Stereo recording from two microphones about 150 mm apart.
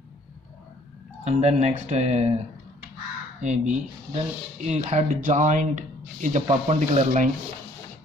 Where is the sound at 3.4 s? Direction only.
50° right (ahead or behind).